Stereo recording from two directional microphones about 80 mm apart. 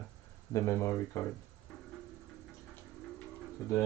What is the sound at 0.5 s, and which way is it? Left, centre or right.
Speech, left.